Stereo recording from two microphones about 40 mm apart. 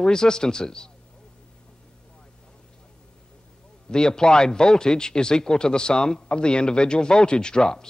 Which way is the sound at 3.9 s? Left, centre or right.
Centre.